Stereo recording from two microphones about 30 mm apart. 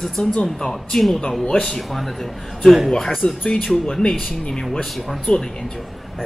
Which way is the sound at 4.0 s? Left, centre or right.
Left.